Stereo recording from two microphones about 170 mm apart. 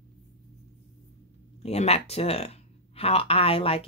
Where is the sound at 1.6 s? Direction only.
40° left (ahead or behind).